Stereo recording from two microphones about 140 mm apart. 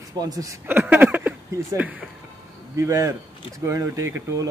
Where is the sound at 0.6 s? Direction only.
15° right (ahead or behind).